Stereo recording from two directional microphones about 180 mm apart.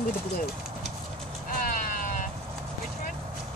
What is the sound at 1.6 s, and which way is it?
Vehicle, 45° left (ahead or behind).